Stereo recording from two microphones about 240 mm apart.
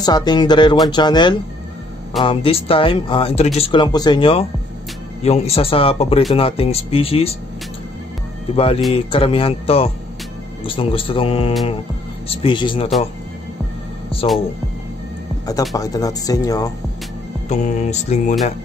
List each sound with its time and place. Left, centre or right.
0.0 s speech: centre
8.5 s speech: left
15.7 s speech: centre
17.5 s speech: left